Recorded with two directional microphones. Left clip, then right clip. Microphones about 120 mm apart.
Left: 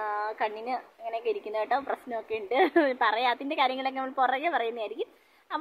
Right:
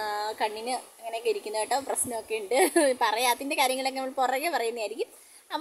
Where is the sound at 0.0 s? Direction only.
40° right (ahead or behind).